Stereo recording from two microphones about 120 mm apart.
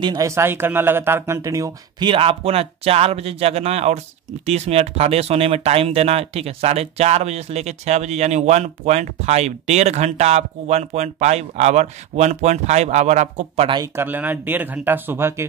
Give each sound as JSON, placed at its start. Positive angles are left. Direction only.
{"t": 0.0, "sound": "speech", "side_deg": -40}
{"t": 0.3, "sound": "speech", "side_deg": -20}
{"t": 2.0, "sound": "speech", "side_deg": -50}
{"t": 13.9, "sound": "speech", "side_deg": -15}